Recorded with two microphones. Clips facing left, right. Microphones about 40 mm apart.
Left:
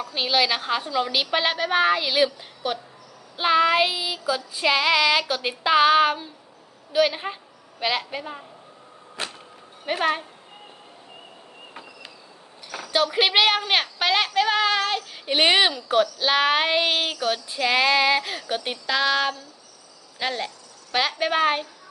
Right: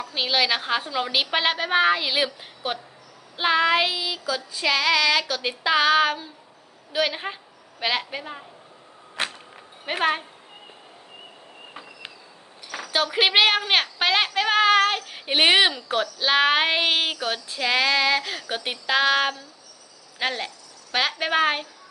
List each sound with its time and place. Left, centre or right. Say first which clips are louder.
0.1 s speech: even; centre
3.3 s child singing: left 1 dB; centre
6.9 s female singing: left 3 dB; centre
7.8 s speech: even; centre
9.9 s speech: right 1 dB; centre
12.6 s speech: left 2 dB; centre
14.5 s speech: right 3 dB; right; by 17.4 s centre
17.5 s female singing: left 1 dB; centre
18.5 s speech: right 1 dB; centre; by 19.4 s right
20.2 s a woman's voice: even; centre